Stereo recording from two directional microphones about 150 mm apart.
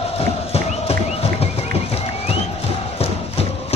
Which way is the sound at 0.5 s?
40° left (ahead or behind).